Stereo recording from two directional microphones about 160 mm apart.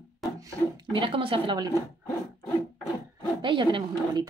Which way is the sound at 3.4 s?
30° right (ahead or behind).